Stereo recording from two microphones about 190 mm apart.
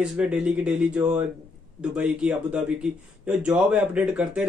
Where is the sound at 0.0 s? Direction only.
5° right (ahead or behind).